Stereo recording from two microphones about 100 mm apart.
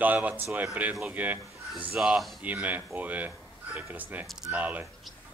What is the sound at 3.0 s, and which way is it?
Speech, 15° right (ahead or behind).